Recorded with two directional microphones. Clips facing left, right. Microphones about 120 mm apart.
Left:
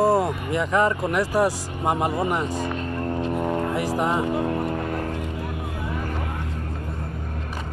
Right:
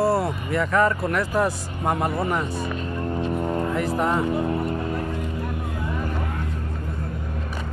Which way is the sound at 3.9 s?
15° left (ahead or behind).